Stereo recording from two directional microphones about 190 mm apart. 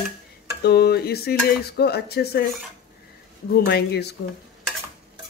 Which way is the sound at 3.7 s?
60° left (ahead or behind).